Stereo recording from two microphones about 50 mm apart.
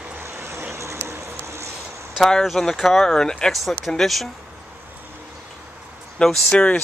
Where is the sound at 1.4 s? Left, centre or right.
Right.